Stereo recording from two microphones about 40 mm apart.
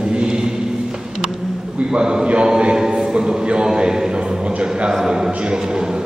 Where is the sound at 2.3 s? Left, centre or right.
Right.